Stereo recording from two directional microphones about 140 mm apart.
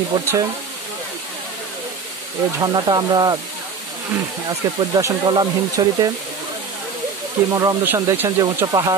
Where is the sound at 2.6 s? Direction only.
30° right (ahead or behind).